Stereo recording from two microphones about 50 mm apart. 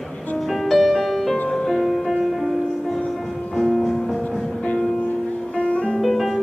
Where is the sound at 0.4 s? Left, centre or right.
Centre.